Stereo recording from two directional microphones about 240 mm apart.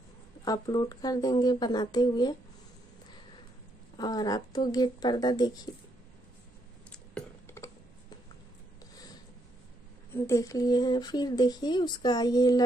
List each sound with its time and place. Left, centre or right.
0.5 s speech: centre
3.9 s speech: centre
6.9 s a sound: centre
10.1 s speech: centre